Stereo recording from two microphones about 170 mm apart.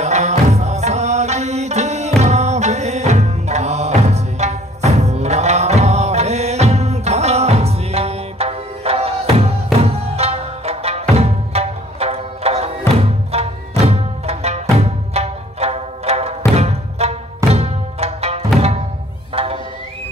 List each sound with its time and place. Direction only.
0.0 s music: 40° right (ahead or behind)